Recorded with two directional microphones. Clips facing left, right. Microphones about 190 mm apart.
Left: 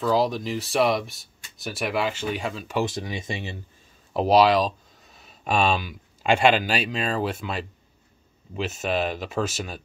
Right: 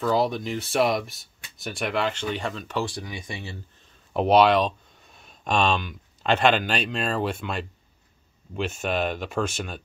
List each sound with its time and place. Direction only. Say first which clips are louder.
0.0 s speech: left 1 dB; centre (ahead or behind)
2.8 s speech: left 4 dB; 20° left (ahead or behind)
4.1 s speech: even; centre (ahead or behind)